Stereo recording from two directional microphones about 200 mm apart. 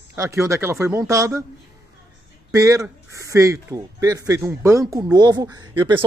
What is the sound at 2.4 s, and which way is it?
Speech, 15° right (ahead or behind).